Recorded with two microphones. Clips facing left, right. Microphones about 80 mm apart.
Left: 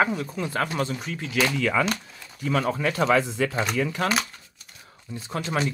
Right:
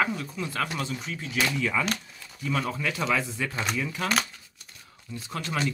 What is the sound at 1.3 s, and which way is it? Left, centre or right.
Speech, left.